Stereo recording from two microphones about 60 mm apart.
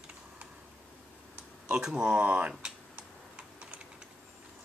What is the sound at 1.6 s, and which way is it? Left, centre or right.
Speech, centre.